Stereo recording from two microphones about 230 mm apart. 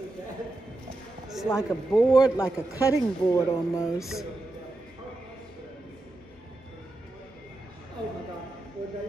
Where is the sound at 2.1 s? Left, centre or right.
Centre.